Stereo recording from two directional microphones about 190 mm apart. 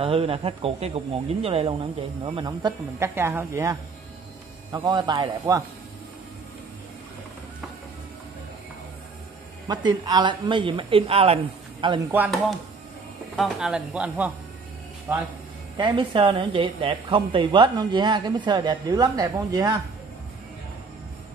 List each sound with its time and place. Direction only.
0.0 s speech: 30° right (ahead or behind); by 3.7 s 15° right (ahead or behind)
4.8 s a woman's voice: 20° right (ahead or behind)
9.7 s a woman's voice: 20° right (ahead or behind)
13.4 s speech: 5° right (ahead or behind)
15.8 s a woman's voice: 25° right (ahead or behind)